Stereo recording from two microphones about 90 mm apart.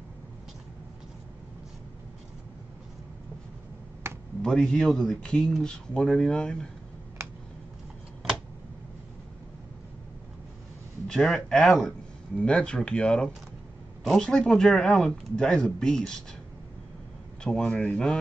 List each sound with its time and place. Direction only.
4.1 s finger snapping: 30° right (ahead or behind)
4.4 s speech: 5° left (ahead or behind)
11.1 s speech: 5° left (ahead or behind)
17.4 s speech: 10° left (ahead or behind)